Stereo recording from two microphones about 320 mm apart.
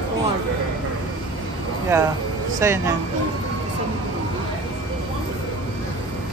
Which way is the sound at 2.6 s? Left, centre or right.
Centre.